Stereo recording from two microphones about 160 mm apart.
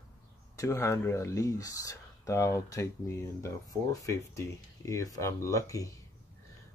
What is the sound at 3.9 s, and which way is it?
Speech, 20° left (ahead or behind).